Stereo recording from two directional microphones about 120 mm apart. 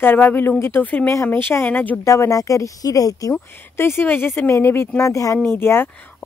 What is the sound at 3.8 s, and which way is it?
A woman's voice, 20° left (ahead or behind).